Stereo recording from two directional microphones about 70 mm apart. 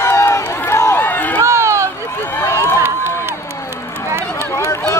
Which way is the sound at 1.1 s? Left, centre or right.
Left.